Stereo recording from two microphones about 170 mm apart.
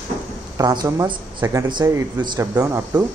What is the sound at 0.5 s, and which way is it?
Speech, 20° right (ahead or behind).